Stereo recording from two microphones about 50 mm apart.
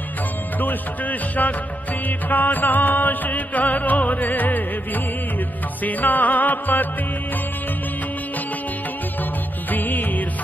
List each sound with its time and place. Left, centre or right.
0.6 s music: left
9.7 s music: left